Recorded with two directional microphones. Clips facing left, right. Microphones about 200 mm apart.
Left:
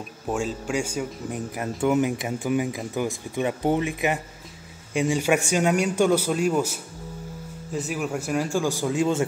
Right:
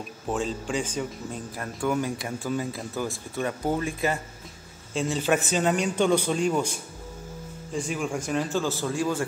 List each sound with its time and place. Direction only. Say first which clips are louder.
0.3 s speech: left 2 dB; 10° left (ahead or behind)